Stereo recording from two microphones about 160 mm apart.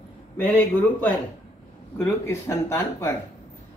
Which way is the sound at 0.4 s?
10° left (ahead or behind).